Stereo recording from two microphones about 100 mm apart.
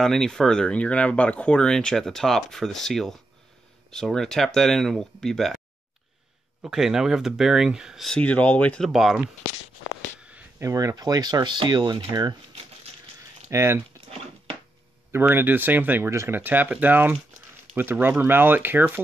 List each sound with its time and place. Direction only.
0.0 s speech: 5° left (ahead or behind)
6.6 s speech: 5° right (ahead or behind)
8.1 s speech: 15° left (ahead or behind)
8.8 s speech: 5° right (ahead or behind)
10.6 s speech: 30° right (ahead or behind)
13.5 s speech: 25° right (ahead or behind)
15.1 s speech: 20° right (ahead or behind)